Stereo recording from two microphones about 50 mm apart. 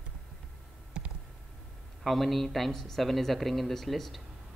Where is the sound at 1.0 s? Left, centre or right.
Centre.